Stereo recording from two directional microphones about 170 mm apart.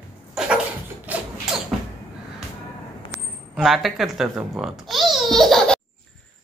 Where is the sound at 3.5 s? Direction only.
Centre (ahead or behind).